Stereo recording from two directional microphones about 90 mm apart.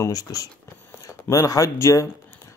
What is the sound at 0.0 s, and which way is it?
Speech, 40° left (ahead or behind).